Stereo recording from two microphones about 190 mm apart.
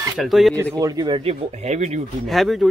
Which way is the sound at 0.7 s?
20° right (ahead or behind).